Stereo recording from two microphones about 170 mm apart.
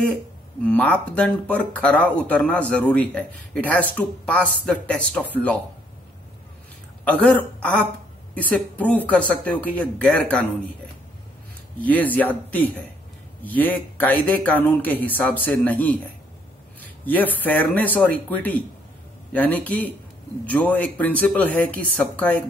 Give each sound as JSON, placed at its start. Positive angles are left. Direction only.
{"t": 0.7, "sound": "speech", "side_deg": 5}
{"t": 7.1, "sound": "speech", "side_deg": 10}
{"t": 11.8, "sound": "speech", "side_deg": 10}